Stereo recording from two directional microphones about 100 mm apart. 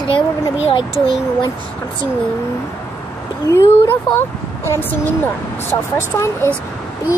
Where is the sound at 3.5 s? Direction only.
25° left (ahead or behind).